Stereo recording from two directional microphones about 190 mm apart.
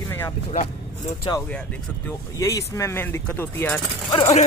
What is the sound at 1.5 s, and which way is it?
Speech, 5° left (ahead or behind).